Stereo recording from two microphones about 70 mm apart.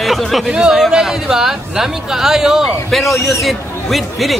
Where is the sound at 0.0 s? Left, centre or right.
Centre.